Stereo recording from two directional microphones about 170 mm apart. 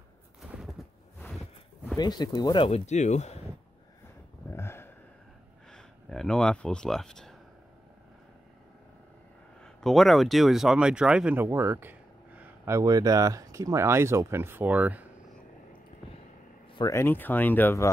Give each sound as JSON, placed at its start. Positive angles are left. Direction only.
{"t": 0.4, "sound": "a sound", "side_deg": 0}
{"t": 2.0, "sound": "speech", "side_deg": 25}
{"t": 4.5, "sound": "a sound", "side_deg": 15}
{"t": 5.7, "sound": "speech", "side_deg": 5}
{"t": 9.6, "sound": "speech", "side_deg": 5}
{"t": 16.7, "sound": "speech", "side_deg": 20}